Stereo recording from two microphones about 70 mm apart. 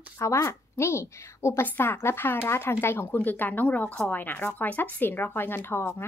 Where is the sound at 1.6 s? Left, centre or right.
Left.